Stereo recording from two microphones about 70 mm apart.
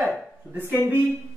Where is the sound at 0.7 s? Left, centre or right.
Right.